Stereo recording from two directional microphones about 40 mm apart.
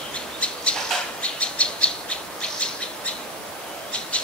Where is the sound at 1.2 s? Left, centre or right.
Left.